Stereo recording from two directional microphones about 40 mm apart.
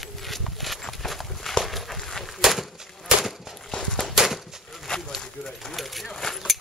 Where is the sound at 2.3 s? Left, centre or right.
Centre.